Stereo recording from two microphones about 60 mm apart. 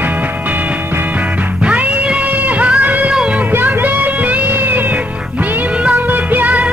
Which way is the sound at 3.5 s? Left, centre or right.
Right.